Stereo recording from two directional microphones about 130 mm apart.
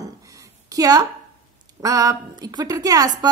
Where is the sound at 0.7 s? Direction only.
30° right (ahead or behind).